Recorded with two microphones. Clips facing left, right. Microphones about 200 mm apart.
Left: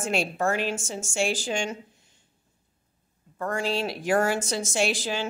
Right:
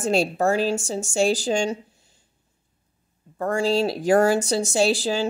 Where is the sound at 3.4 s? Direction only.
35° right (ahead or behind).